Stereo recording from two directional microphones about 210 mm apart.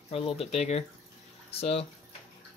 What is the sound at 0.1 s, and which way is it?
Speech, 30° left (ahead or behind).